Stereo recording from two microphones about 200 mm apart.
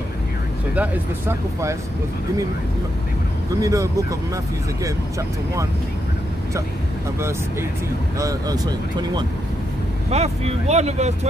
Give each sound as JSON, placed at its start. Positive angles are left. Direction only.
{"t": 0.7, "sound": "speech", "side_deg": -10}
{"t": 3.6, "sound": "speech", "side_deg": -15}
{"t": 8.2, "sound": "speech", "side_deg": -20}
{"t": 10.1, "sound": "speech", "side_deg": -35}